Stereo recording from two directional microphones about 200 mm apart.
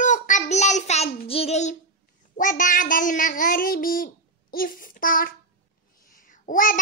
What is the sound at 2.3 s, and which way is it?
Child singing, 40° left (ahead or behind).